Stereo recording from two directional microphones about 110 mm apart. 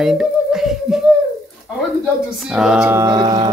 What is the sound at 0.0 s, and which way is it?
Music, 5° right (ahead or behind).